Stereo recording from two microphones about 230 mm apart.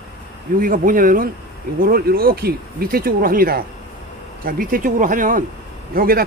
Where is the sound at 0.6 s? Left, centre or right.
Right.